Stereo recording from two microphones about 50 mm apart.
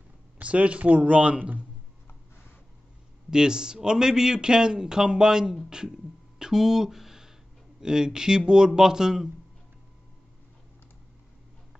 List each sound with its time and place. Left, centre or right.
0.4 s speech: right
3.3 s a man's voice: centre